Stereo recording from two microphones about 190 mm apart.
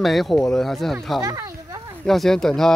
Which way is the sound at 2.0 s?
Centre (ahead or behind).